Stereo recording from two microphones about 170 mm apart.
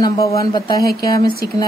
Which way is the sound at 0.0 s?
20° left (ahead or behind).